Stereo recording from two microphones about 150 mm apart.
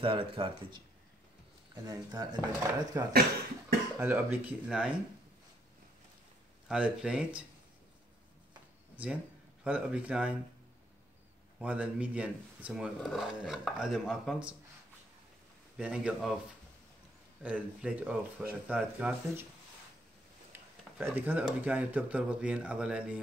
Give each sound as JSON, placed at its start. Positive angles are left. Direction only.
{"t": 0.0, "sound": "speech", "side_deg": -35}
{"t": 6.7, "sound": "speech", "side_deg": -5}
{"t": 8.9, "sound": "speech", "side_deg": -10}
{"t": 11.6, "sound": "speech", "side_deg": -10}
{"t": 15.8, "sound": "speech", "side_deg": -5}
{"t": 17.4, "sound": "speech", "side_deg": -10}
{"t": 20.5, "sound": "a sound", "side_deg": -10}
{"t": 21.5, "sound": "speech", "side_deg": -10}